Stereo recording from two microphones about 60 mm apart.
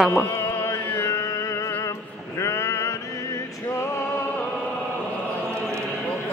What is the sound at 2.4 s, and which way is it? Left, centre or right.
Male singing, left.